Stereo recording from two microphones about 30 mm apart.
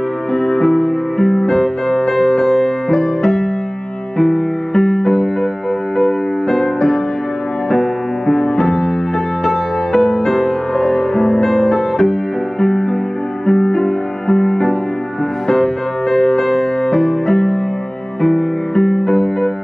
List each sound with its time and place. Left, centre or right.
0.3 s music: centre
18.8 s music: centre